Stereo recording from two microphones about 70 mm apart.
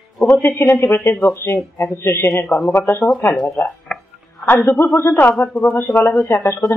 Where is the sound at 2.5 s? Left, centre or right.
Left.